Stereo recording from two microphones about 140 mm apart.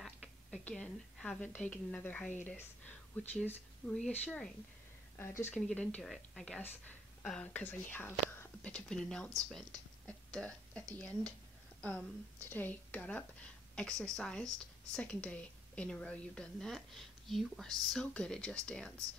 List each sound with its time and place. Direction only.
0.0 s a sound: 5° left (ahead or behind)
2.4 s a woman's voice: 10° left (ahead or behind)
5.5 s a woman's voice: 5° left (ahead or behind)
10.0 s a sound: 10° left (ahead or behind)
11.0 s a woman's voice: 10° left (ahead or behind)
12.4 s a woman's voice: 15° left (ahead or behind)